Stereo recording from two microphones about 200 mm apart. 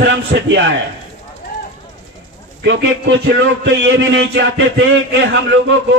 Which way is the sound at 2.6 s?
65° right (ahead or behind).